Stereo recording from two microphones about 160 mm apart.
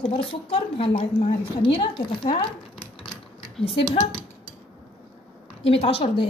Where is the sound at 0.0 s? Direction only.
35° left (ahead or behind).